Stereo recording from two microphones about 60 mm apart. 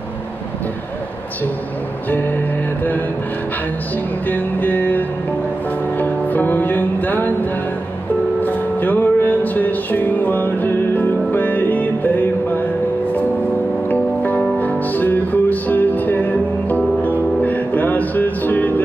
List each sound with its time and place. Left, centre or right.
2.0 s music: left
4.3 s music: left
8.4 s music: left
13.8 s music: left